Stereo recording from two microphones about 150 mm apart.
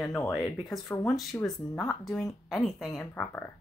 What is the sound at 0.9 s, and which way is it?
Speech, 20° left (ahead or behind).